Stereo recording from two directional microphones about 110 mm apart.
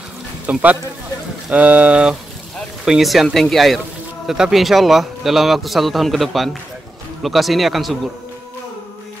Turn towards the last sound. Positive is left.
turn(degrees=0)  # may be behind; listen again after turning